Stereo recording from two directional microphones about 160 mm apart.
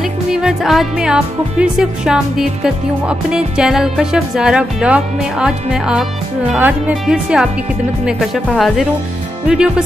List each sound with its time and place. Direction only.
0.3 s music: 5° right (ahead or behind)